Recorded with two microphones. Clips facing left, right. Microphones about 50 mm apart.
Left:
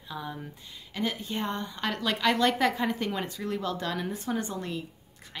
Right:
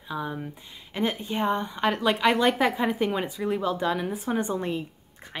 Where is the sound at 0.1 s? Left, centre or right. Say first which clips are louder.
Right 6 dB; centre.